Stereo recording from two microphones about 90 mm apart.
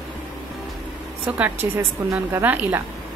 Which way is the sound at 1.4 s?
25° right (ahead or behind).